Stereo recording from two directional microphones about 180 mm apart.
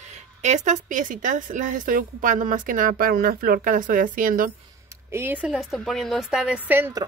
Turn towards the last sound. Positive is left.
turn(degrees=-10)  # may be behind; listen again after turning